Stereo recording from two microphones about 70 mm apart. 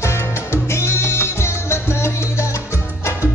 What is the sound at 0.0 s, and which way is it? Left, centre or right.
Music, left.